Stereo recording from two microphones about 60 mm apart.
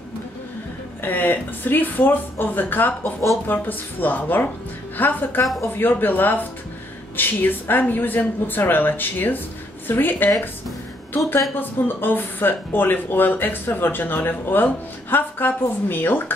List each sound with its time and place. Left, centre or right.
1.0 s speech: left
11.6 s speech: left